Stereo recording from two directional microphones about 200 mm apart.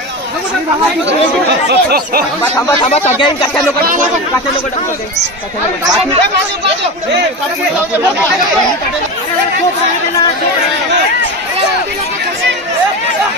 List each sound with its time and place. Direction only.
1.7 s speech: 55° right (ahead or behind)
2.9 s speech: 25° left (ahead or behind)
3.8 s speech: 40° right (ahead or behind)